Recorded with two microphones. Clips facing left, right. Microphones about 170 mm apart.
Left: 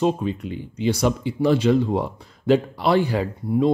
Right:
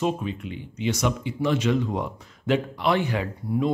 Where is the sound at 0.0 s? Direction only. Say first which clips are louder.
Left 5 dB; 35° left (ahead or behind).